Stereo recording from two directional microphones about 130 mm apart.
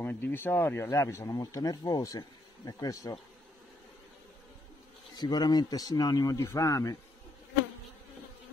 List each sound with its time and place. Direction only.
0.0 s speech: 15° left (ahead or behind)
5.1 s speech: 35° left (ahead or behind)